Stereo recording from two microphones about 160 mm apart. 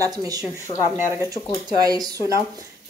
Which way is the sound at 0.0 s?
25° right (ahead or behind).